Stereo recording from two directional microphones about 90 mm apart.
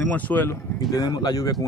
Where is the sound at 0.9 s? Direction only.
45° left (ahead or behind).